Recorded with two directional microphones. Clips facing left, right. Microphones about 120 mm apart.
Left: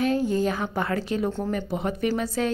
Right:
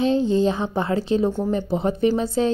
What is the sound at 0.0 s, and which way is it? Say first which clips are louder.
A woman's voice: right 4 dB; 25° right (ahead or behind).